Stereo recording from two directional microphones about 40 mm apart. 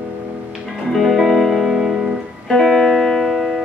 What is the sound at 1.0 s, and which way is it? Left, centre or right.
Music, centre.